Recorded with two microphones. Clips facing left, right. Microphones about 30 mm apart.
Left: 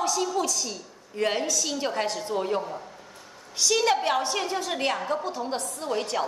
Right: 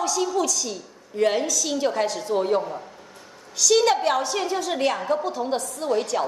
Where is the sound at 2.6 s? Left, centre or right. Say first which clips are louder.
Right 4 dB; centre.